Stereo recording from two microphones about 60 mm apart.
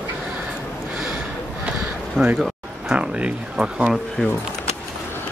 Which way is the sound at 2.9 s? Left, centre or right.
Right.